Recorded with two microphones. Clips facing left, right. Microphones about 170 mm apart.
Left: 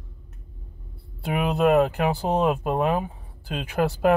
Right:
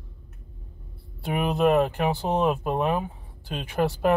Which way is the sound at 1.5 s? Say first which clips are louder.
Left 2 dB; 5° left (ahead or behind).